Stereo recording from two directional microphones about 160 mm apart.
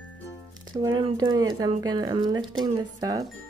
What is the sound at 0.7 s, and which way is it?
Speech, 25° right (ahead or behind).